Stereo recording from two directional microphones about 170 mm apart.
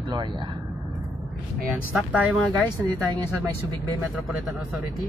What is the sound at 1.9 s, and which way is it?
Speech, 10° right (ahead or behind).